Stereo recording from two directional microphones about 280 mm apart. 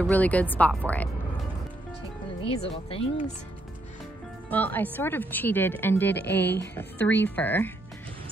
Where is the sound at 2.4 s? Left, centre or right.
Left.